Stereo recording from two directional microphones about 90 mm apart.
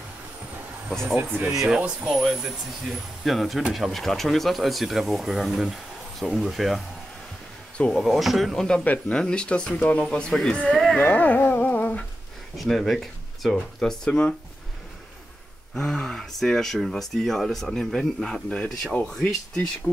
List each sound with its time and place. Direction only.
0.8 s speech: centre (ahead or behind)
1.8 s speech: 15° right (ahead or behind)
2.0 s speech: centre (ahead or behind)
7.9 s speech: centre (ahead or behind)
8.6 s speech: 15° left (ahead or behind)
10.7 s a sound: centre (ahead or behind)
11.0 s humming: 15° left (ahead or behind)
12.5 s speech: centre (ahead or behind)
15.7 s speech: 10° left (ahead or behind)